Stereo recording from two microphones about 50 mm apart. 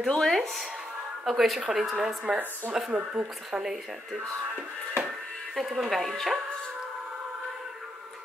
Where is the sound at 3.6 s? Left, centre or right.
Centre.